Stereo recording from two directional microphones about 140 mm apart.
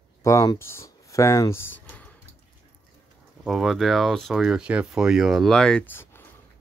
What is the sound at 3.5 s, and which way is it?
Speech, centre (ahead or behind).